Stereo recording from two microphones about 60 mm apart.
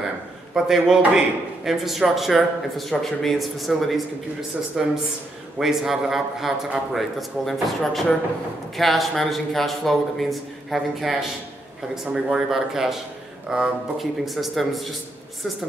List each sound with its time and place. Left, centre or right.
0.6 s a man's voice: centre